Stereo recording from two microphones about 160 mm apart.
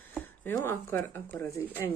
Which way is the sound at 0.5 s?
15° left (ahead or behind).